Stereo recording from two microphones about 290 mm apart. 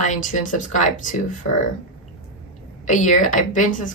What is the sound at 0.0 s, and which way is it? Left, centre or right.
Speech, left.